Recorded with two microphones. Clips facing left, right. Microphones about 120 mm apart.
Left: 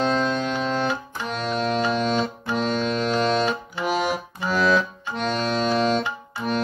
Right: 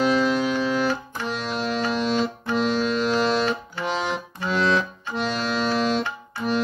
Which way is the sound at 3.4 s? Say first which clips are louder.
Left 1 dB; 10° left (ahead or behind).